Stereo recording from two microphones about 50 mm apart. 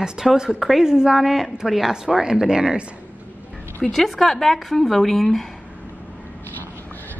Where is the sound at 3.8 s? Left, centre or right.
Centre.